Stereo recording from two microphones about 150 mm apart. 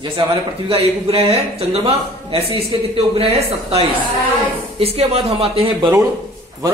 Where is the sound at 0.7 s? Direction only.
40° right (ahead or behind).